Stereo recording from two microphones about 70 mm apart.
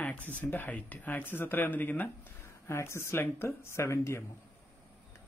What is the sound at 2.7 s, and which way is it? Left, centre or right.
Speech, left.